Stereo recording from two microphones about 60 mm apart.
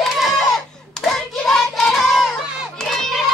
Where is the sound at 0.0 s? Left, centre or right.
Centre.